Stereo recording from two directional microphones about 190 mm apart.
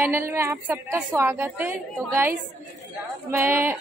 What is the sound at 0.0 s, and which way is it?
Speech, 15° right (ahead or behind).